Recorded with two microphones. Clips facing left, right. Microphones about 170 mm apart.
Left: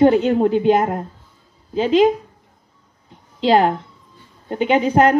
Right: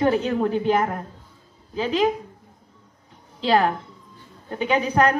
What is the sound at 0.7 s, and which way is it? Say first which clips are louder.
A woman's voice: left 4 dB; 20° left (ahead or behind).